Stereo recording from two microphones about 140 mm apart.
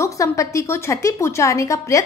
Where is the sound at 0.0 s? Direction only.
20° left (ahead or behind).